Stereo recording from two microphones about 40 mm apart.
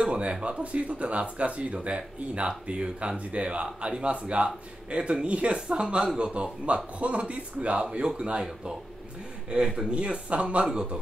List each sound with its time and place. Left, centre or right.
0.0 s speech: right
8.1 s speech: right